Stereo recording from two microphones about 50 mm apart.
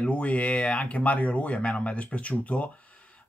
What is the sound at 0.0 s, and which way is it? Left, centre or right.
Speech, left.